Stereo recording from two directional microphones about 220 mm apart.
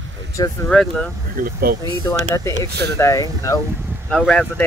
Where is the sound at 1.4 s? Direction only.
40° right (ahead or behind).